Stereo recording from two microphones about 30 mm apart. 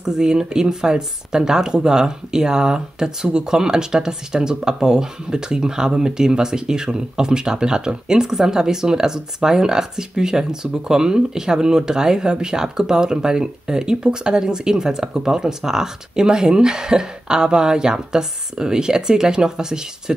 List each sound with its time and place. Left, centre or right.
0.0 s speech: right